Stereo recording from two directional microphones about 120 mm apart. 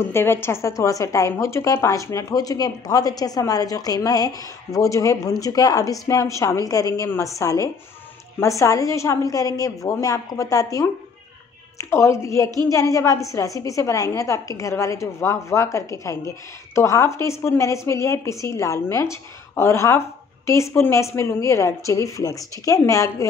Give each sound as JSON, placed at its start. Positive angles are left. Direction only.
{"t": 0.1, "sound": "a woman's voice", "side_deg": 20}